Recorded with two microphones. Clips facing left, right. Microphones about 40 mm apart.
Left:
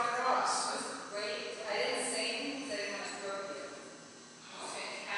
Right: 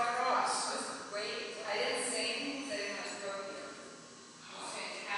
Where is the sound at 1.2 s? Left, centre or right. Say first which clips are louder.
Left 1 dB; centre.